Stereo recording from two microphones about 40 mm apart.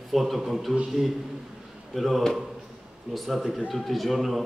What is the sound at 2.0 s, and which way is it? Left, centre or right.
A man's voice, centre.